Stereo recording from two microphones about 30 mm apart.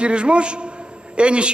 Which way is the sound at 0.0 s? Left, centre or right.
Right.